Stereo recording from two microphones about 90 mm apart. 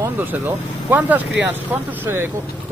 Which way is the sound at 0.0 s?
20° right (ahead or behind).